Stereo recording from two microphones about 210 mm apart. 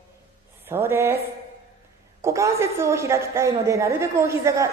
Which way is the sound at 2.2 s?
15° right (ahead or behind).